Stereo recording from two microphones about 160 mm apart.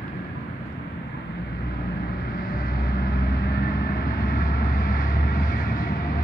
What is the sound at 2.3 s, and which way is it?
Vehicle, 65° left (ahead or behind).